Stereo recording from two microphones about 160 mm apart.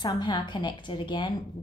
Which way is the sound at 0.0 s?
25° left (ahead or behind).